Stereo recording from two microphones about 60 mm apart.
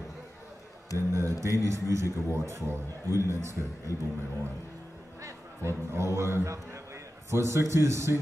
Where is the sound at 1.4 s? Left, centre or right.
Right.